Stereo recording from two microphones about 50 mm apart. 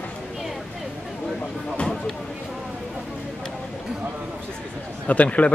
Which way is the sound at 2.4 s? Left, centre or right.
Centre.